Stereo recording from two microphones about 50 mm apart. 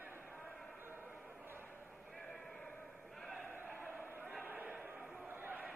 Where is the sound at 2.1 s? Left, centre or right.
Centre.